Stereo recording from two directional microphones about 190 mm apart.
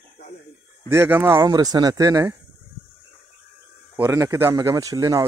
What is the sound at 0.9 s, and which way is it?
Speech, 10° right (ahead or behind).